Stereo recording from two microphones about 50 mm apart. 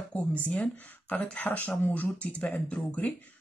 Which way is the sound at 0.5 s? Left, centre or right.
Left.